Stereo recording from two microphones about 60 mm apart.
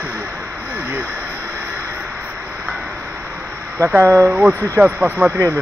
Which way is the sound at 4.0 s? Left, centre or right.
Right.